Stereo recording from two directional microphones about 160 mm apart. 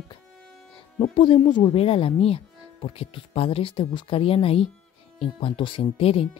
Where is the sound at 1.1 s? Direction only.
30° left (ahead or behind).